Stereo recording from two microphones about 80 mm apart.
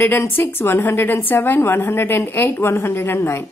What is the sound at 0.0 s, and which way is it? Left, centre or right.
A woman's voice, left.